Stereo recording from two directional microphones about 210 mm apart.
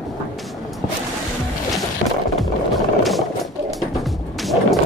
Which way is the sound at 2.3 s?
Centre (ahead or behind).